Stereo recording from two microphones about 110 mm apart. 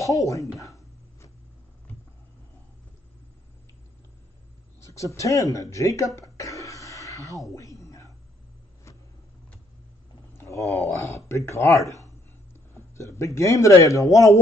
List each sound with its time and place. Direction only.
0.0 s speech: 30° left (ahead or behind)
4.8 s speech: 25° left (ahead or behind)
7.5 s a sound: 30° left (ahead or behind)
10.3 s speech: 25° left (ahead or behind)
12.9 s speech: 25° left (ahead or behind)